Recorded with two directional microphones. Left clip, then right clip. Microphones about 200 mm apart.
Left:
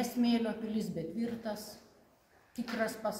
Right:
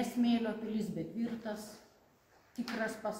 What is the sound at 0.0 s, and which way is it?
A woman's voice, 25° left (ahead or behind).